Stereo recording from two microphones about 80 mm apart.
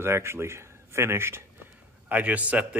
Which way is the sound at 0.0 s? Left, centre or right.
Right.